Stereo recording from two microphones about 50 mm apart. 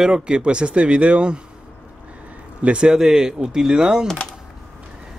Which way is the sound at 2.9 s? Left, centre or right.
Centre.